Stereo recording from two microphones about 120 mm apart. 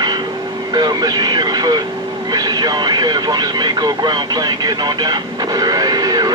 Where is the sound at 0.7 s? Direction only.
35° right (ahead or behind).